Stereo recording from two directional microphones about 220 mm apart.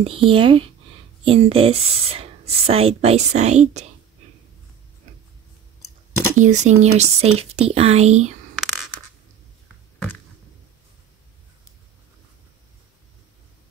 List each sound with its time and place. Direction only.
0.0 s speech: 25° right (ahead or behind)
6.3 s speech: 35° right (ahead or behind)